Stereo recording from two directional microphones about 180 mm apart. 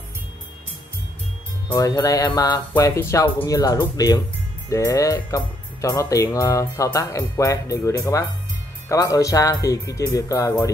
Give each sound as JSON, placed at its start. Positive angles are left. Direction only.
{"t": 1.7, "sound": "speech", "side_deg": 20}